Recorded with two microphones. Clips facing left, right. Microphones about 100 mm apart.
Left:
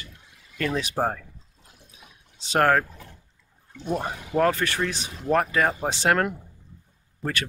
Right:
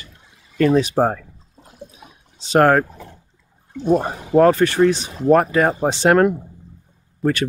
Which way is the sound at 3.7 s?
40° right (ahead or behind).